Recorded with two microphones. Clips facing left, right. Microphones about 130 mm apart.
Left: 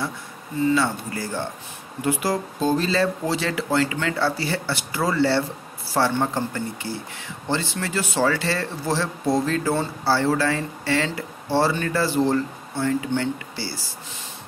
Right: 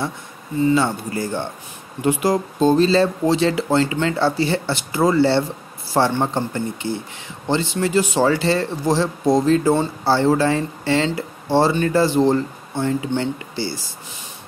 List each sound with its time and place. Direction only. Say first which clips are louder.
0.7 s speech: right 3 dB; 20° right (ahead or behind)